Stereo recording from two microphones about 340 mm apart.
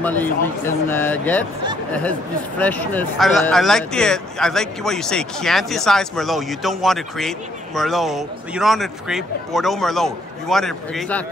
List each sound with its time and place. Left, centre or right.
0.0 s speech: centre
2.6 s speech: centre